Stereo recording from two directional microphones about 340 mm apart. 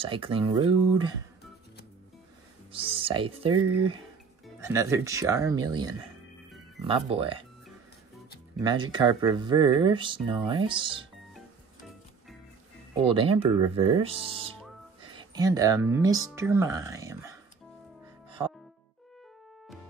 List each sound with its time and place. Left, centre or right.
0.0 s speech: centre
2.7 s speech: centre
3.5 s speech: right
4.6 s speech: centre
6.9 s speech: centre
8.5 s speech: centre
13.1 s speech: centre